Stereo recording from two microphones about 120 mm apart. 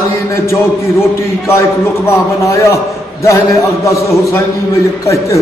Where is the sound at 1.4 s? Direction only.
20° left (ahead or behind).